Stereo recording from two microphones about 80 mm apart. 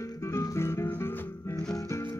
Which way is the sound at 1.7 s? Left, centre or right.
Left.